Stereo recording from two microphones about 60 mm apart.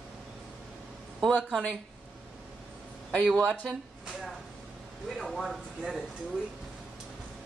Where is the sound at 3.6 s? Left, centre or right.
Centre.